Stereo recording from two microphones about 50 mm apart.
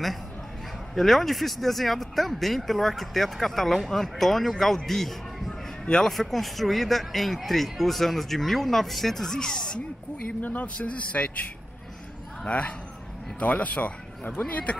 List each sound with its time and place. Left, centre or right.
0.9 s speech: centre
10.4 s speech: left
12.4 s speech: left